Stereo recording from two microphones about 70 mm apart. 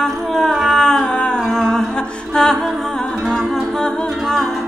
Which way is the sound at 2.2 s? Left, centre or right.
Centre.